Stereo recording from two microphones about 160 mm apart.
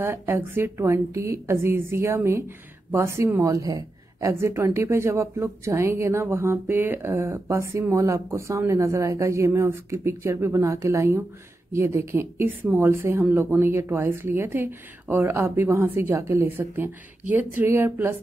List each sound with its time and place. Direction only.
0.0 s a woman's voice: 15° right (ahead or behind)